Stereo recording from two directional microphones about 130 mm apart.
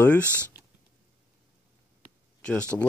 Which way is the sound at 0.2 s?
20° right (ahead or behind).